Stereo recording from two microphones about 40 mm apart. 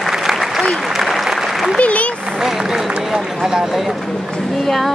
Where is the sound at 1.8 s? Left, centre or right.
Left.